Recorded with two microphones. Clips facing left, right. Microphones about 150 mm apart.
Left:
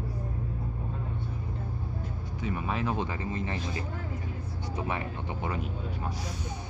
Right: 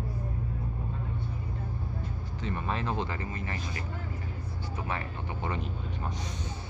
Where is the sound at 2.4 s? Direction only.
5° left (ahead or behind).